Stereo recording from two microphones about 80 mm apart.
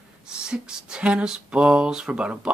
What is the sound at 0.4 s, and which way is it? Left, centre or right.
Speech, centre.